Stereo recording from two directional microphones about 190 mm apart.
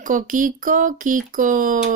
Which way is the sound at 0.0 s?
45° right (ahead or behind).